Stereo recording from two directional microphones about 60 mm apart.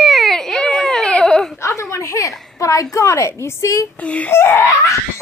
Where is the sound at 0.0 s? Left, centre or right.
Centre.